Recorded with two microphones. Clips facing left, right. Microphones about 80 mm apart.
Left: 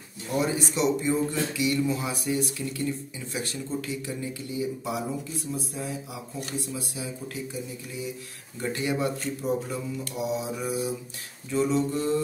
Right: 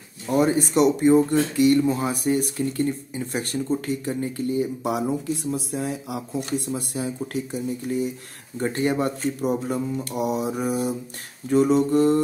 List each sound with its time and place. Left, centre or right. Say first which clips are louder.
0.3 s speech: right 7 dB; right
8.5 s speech: right 5 dB; right